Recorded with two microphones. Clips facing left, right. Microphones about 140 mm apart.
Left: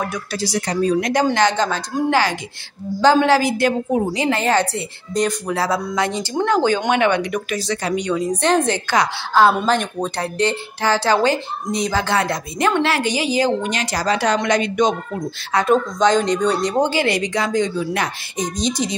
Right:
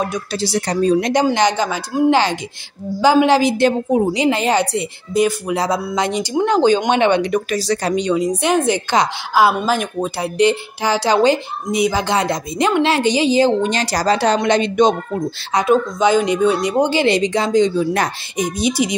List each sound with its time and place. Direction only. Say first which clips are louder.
0.0 s a woman's voice: right 3 dB; 25° right (ahead or behind)
1.3 s a woman's voice: right 1 dB; 15° right (ahead or behind); by 8.0 s 35° right (ahead or behind)
8.0 s a woman's voice: right 2 dB; 20° right (ahead or behind)
15.6 s speech: right 1 dB; 5° right (ahead or behind)
16.9 s a woman's voice: right 4 dB; 25° right (ahead or behind)
18.4 s speech: right 4 dB; 10° right (ahead or behind)